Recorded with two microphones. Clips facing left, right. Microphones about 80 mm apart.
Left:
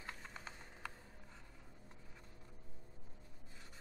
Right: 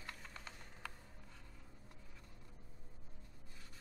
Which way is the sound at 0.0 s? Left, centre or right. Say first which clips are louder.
Left 2 dB; centre.